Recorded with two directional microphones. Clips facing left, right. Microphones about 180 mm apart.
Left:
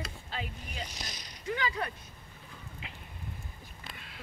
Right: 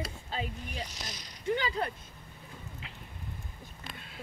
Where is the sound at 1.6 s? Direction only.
30° right (ahead or behind).